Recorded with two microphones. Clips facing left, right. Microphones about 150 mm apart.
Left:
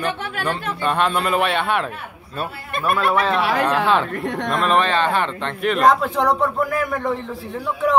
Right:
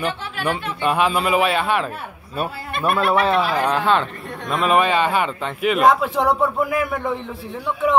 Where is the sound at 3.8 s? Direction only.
Centre (ahead or behind).